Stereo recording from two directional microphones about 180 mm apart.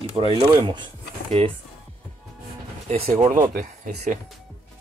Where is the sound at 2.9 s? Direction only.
35° right (ahead or behind).